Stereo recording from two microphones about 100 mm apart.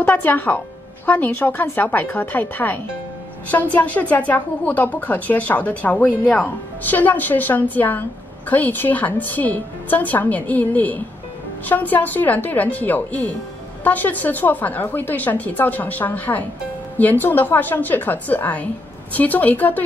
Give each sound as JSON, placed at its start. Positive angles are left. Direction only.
{"t": 0.0, "sound": "a woman's voice", "side_deg": 20}